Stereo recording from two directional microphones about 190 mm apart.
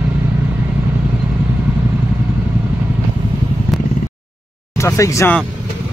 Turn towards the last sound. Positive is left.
turn(degrees=15)  # may be behind; listen again after turning